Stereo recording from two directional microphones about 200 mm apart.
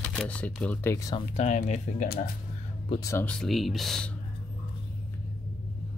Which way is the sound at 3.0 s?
10° left (ahead or behind).